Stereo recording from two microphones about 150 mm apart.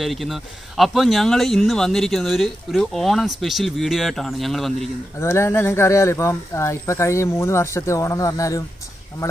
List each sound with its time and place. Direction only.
0.0 s speech: centre (ahead or behind)
5.1 s speech: 15° left (ahead or behind)